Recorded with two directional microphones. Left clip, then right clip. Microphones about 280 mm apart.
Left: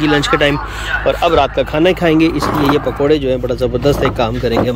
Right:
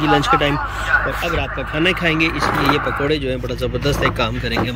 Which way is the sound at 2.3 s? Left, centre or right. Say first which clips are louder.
Left 2 dB; left.